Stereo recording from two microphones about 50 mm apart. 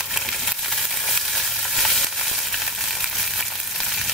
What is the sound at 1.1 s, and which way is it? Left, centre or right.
Frying, centre.